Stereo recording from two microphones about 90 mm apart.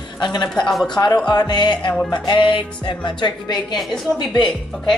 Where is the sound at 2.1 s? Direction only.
60° left (ahead or behind).